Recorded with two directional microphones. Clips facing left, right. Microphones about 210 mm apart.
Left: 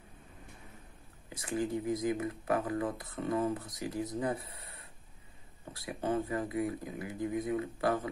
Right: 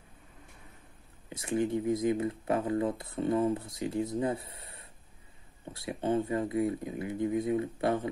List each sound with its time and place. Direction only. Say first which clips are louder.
1.3 s speech: right 4 dB; 25° right (ahead or behind)